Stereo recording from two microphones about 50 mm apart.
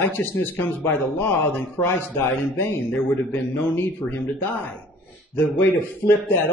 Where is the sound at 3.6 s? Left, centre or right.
Left.